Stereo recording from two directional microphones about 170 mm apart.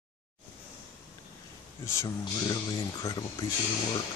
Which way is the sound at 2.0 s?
25° left (ahead or behind).